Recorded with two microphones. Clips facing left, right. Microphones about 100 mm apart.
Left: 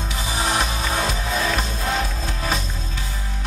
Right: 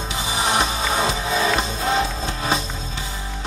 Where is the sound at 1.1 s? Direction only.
20° right (ahead or behind).